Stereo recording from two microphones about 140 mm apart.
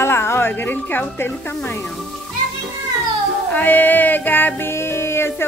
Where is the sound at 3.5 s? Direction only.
10° left (ahead or behind).